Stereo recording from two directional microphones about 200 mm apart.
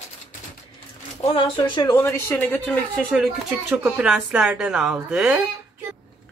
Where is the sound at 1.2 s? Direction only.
25° left (ahead or behind).